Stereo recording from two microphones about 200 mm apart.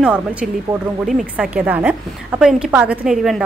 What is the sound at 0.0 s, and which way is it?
A woman's voice, 5° right (ahead or behind).